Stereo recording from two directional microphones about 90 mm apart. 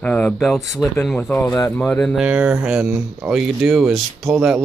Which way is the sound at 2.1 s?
10° right (ahead or behind).